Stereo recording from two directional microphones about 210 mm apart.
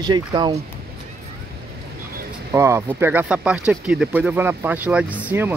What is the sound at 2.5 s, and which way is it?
Speech, 15° right (ahead or behind).